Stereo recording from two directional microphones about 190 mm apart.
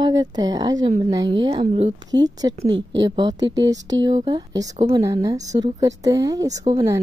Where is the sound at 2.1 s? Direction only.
20° right (ahead or behind).